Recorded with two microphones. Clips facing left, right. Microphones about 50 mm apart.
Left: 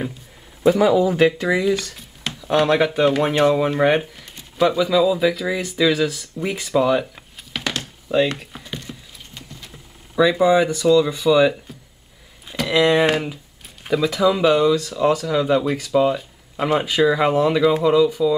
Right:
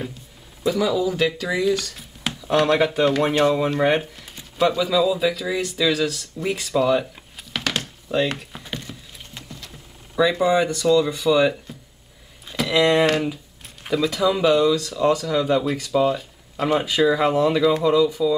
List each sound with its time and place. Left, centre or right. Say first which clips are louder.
0.7 s speech: left 5 dB; left
1.5 s speech: left 2 dB; centre
2.0 s speech: right 1 dB; centre
7.8 s a sound: left 7 dB; centre
10.1 s speech: left 3 dB; centre